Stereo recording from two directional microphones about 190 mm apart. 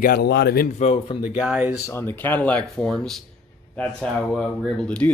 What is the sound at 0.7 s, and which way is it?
Speech, 30° left (ahead or behind).